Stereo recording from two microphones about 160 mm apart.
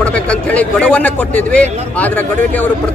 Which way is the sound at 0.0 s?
10° left (ahead or behind).